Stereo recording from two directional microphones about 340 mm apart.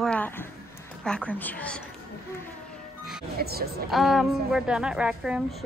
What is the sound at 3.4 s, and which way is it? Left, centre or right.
Speech, right.